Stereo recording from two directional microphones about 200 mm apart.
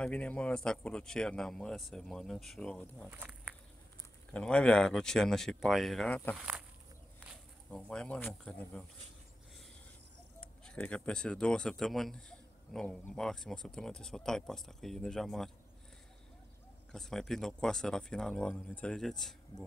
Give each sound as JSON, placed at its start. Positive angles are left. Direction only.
{"t": 0.0, "sound": "speech", "side_deg": 5}
{"t": 3.1, "sound": "speech", "side_deg": -10}
{"t": 4.3, "sound": "speech", "side_deg": 5}
{"t": 6.3, "sound": "speech", "side_deg": -5}
{"t": 7.7, "sound": "speech", "side_deg": 5}
{"t": 10.4, "sound": "speech", "side_deg": 5}
{"t": 16.9, "sound": "speech", "side_deg": 0}